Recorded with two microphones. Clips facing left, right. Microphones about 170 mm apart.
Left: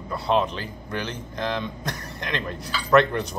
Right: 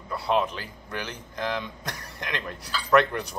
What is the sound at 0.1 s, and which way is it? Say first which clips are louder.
Speech: left 2 dB; 5° right (ahead or behind).